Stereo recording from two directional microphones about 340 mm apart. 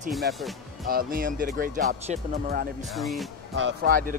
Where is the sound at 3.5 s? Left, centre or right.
Right.